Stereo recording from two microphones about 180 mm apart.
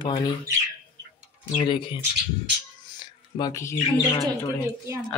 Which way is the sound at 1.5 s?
30° left (ahead or behind).